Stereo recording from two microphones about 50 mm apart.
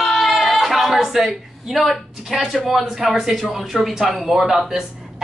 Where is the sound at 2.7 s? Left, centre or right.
Centre.